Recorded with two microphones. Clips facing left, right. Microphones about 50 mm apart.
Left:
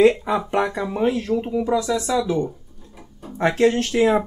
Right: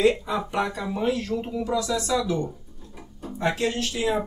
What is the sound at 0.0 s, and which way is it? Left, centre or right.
Speech, left.